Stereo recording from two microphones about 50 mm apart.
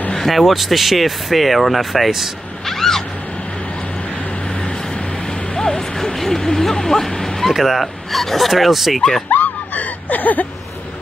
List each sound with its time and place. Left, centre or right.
0.1 s speech: centre
5.5 s speech: centre
9.3 s snicker: left